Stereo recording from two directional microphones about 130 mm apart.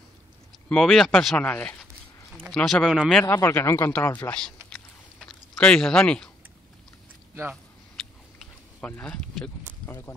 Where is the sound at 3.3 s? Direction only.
20° left (ahead or behind).